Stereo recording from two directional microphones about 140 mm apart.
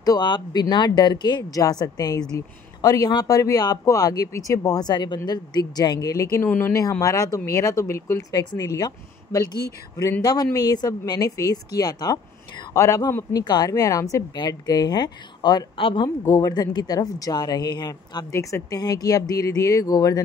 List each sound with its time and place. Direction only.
0.0 s speech: 30° left (ahead or behind)